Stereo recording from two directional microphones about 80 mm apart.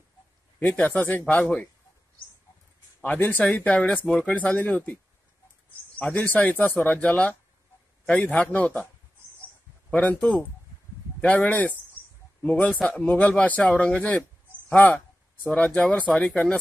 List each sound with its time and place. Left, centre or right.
0.6 s speech: centre
3.0 s speech: left
5.9 s a man's voice: centre
9.8 s speech: centre
11.1 s a man's voice: centre